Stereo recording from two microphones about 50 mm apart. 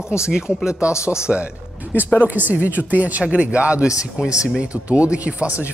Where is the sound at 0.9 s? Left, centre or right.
Left.